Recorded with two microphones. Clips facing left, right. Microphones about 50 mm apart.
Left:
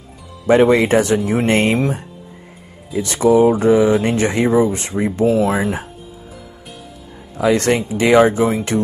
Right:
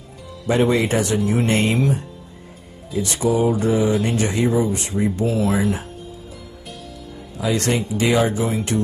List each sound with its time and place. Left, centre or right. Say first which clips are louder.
0.5 s speech: left 6 dB; left
7.3 s speech: left 6 dB; left